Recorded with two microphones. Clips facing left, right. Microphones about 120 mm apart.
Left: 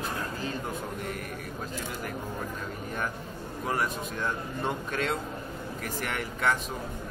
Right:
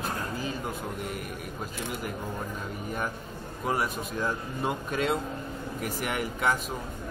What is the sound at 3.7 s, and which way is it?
Speech, 5° right (ahead or behind).